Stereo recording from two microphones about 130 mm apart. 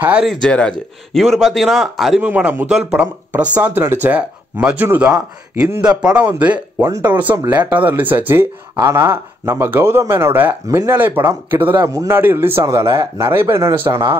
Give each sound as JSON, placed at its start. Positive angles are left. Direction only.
{"t": 0.0, "sound": "speech", "side_deg": -10}
{"t": 0.3, "sound": "speech", "side_deg": 5}
{"t": 2.2, "sound": "a man's voice", "side_deg": -15}
{"t": 5.8, "sound": "a man's voice", "side_deg": -10}